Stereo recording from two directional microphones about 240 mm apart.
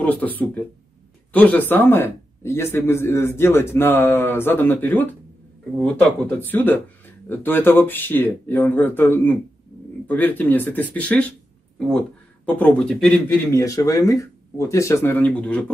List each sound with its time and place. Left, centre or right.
0.0 s speech: centre
12.4 s speech: centre